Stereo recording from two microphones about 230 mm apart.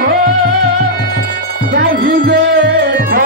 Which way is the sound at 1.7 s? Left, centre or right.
Right.